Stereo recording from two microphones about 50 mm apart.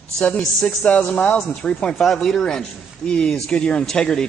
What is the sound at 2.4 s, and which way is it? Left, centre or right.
A man's voice, centre.